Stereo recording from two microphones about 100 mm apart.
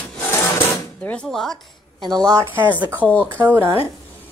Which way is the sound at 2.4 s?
20° right (ahead or behind).